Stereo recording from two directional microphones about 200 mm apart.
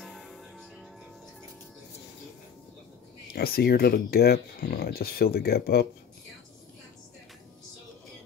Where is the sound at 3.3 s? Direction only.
50° left (ahead or behind).